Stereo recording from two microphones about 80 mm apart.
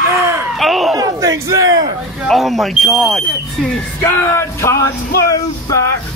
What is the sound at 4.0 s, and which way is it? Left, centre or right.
Speech, left.